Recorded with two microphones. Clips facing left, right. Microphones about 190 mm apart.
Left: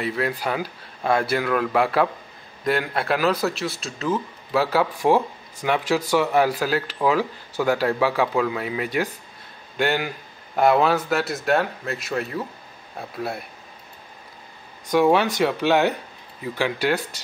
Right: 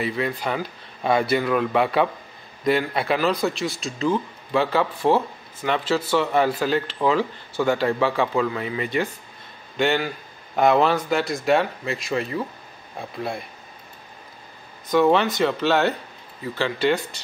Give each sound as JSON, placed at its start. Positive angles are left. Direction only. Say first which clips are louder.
{"t": 0.0, "sound": "speech", "louder": "even", "side_deg": 0}
{"t": 14.9, "sound": "speech", "louder": "even", "side_deg": 10}